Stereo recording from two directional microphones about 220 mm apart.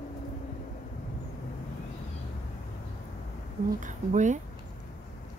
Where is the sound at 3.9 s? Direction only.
35° right (ahead or behind).